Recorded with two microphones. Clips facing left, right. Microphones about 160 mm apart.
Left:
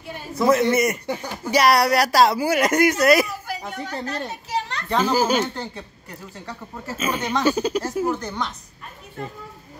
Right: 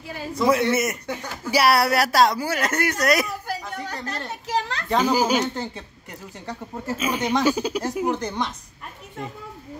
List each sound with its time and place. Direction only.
0.4 s speech: 5° left (ahead or behind)
1.5 s speech: 5° right (ahead or behind)
3.6 s speech: 25° left (ahead or behind)
4.6 s a child's voice: 90° right
4.9 s speech: 15° right (ahead or behind)
7.0 s speech: 10° right (ahead or behind)